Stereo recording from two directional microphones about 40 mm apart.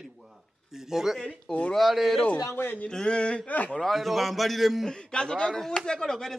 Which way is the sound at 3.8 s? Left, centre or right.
Centre.